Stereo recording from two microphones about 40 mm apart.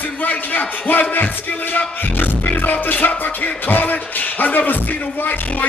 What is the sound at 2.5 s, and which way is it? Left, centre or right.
Music, left.